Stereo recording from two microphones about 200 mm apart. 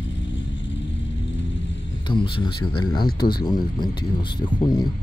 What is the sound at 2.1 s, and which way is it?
Speech, 25° left (ahead or behind).